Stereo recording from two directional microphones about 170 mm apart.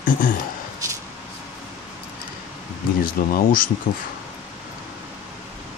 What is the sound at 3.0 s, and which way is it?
Speech, 55° left (ahead or behind).